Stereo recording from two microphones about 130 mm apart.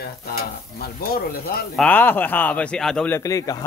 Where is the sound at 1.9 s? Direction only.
15° left (ahead or behind).